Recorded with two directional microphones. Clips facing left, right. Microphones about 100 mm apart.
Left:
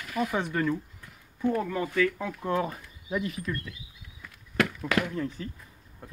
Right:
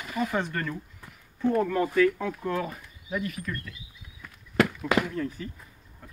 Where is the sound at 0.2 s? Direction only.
15° left (ahead or behind).